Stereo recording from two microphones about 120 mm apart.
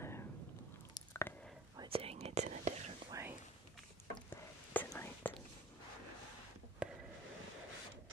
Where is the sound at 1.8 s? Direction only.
55° right (ahead or behind); by 2.9 s 75° right (ahead or behind).